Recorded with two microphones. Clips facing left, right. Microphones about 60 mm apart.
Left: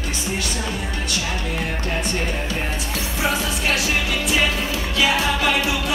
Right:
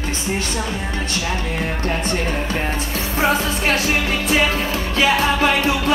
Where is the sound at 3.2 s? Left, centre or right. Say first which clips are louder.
Right 5 dB; right.